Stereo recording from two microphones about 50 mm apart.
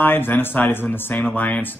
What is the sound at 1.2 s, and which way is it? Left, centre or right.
Speech, left.